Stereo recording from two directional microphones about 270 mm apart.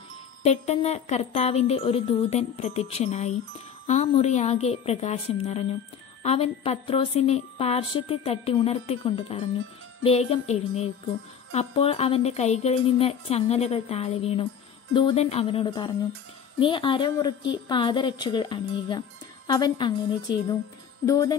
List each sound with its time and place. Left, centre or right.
0.4 s a woman's voice: left
21.0 s a woman's voice: centre